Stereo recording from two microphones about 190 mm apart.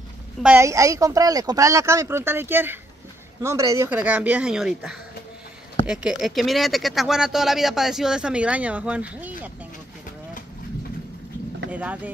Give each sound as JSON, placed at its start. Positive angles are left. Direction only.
{"t": 0.4, "sound": "speech", "side_deg": -10}
{"t": 11.7, "sound": "speech", "side_deg": -10}